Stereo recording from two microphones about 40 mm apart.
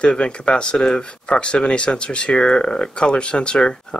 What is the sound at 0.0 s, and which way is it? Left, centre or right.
Speech, left.